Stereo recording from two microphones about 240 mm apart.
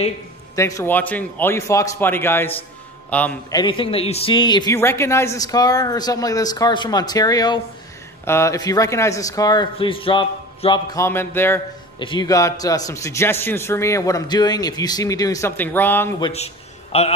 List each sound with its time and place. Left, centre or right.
0.6 s a man's voice: centre
16.2 s a man's voice: left